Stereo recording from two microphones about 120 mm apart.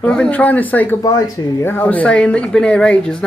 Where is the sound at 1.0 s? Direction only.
35° left (ahead or behind).